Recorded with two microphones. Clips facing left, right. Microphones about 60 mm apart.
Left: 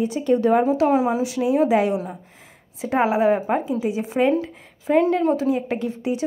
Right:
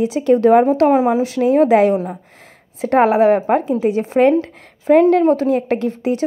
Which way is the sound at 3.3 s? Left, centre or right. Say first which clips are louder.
Right 6 dB; right.